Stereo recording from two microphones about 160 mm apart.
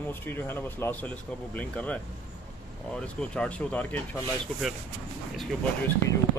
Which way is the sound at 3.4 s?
10° left (ahead or behind).